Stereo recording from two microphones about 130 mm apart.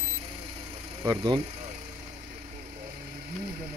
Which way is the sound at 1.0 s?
30° right (ahead or behind).